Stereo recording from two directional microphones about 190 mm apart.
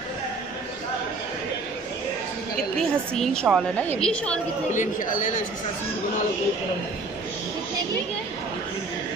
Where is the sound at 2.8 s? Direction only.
5° left (ahead or behind).